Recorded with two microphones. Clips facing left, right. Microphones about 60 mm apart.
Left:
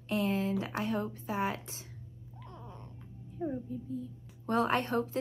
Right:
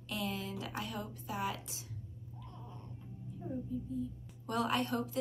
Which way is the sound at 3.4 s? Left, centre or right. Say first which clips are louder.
Left 8 dB; left.